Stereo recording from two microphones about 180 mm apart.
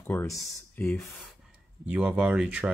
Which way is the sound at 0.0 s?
15° left (ahead or behind).